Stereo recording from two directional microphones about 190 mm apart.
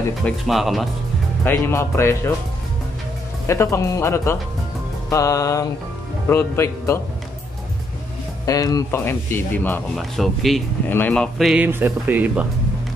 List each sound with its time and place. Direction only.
0.2 s speech: centre (ahead or behind)
1.4 s speech: 10° left (ahead or behind)
3.4 s speech: 15° left (ahead or behind)
8.5 s speech: 20° left (ahead or behind); by 12.4 s 10° right (ahead or behind)